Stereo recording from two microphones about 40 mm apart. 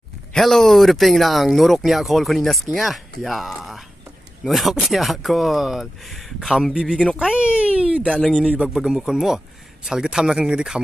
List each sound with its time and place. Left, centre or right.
0.4 s speech: centre
6.7 s a child's voice: centre
8.6 s a man's voice: centre